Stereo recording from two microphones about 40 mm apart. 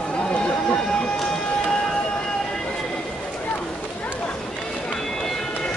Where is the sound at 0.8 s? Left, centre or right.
Centre.